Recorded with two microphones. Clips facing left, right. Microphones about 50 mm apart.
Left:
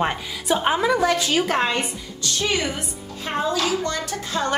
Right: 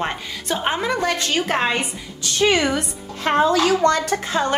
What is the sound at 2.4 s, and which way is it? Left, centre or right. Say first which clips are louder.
A woman's voice: right 7 dB; right.